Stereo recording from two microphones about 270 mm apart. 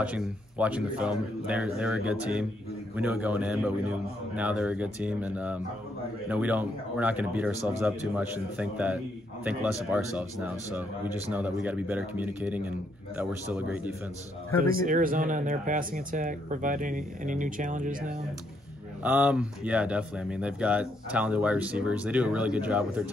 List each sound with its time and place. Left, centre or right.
0.0 s speech: centre
14.6 s speech: right
19.0 s speech: centre